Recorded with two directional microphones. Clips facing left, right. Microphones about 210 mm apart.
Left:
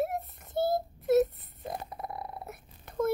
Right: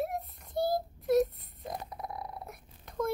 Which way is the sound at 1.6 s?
5° left (ahead or behind).